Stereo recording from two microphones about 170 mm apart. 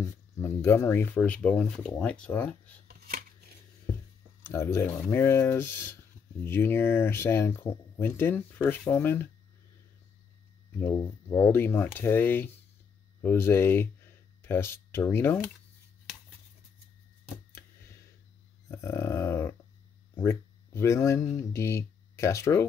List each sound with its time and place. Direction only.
0.4 s speech: 15° left (ahead or behind)
3.1 s scissors: 55° right (ahead or behind)
4.4 s speech: 15° left (ahead or behind)
10.8 s speech: 15° left (ahead or behind)
18.7 s a sound: 15° left (ahead or behind)
20.2 s speech: 15° left (ahead or behind)